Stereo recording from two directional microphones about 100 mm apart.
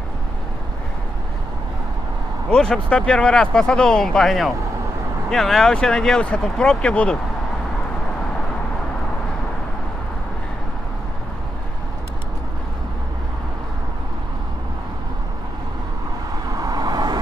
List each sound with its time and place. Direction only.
2.5 s speech: 10° left (ahead or behind)
16.5 s vehicle: 40° right (ahead or behind)